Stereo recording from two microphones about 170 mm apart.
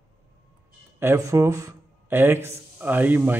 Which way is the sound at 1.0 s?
15° right (ahead or behind).